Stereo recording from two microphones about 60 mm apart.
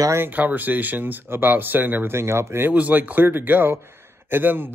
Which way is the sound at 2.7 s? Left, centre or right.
Right.